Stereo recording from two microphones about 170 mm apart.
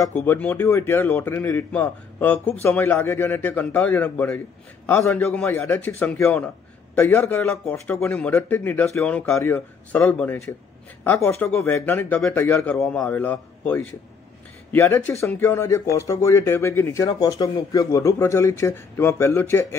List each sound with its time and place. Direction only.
0.0 s speech: 10° left (ahead or behind)